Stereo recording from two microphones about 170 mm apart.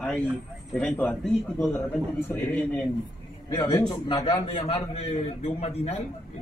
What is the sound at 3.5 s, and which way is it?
A man's voice, 25° left (ahead or behind).